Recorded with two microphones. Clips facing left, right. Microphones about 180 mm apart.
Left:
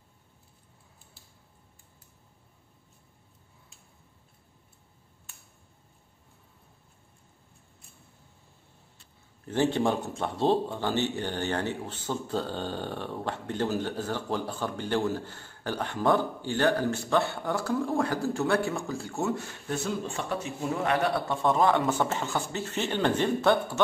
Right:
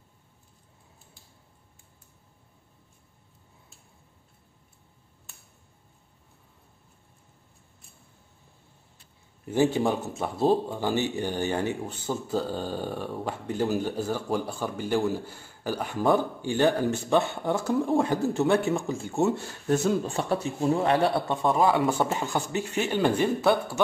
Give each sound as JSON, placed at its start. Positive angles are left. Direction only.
{"t": 9.5, "sound": "speech", "side_deg": -10}
{"t": 19.7, "sound": "speech", "side_deg": -40}
{"t": 21.5, "sound": "speech", "side_deg": -5}